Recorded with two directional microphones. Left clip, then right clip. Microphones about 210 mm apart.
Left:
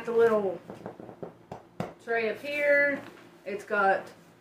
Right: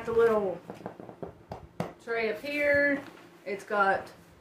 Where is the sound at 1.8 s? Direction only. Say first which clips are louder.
Left 2 dB; centre (ahead or behind).